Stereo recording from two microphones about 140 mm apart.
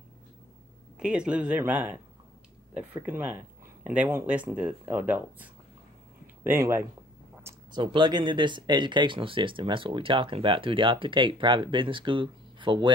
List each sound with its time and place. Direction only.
0.9 s speech: 5° right (ahead or behind)
7.7 s speech: 35° right (ahead or behind)